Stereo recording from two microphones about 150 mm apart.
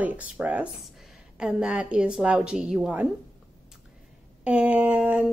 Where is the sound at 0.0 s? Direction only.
10° right (ahead or behind).